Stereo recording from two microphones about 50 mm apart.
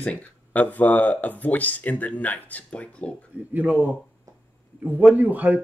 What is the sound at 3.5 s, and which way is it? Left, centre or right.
Speech, right.